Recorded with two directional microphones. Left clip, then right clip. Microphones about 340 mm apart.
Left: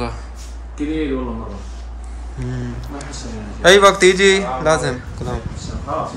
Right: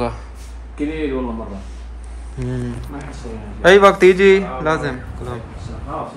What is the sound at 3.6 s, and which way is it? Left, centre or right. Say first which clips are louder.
Speech: even; centre.